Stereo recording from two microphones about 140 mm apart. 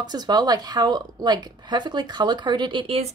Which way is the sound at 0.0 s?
30° right (ahead or behind).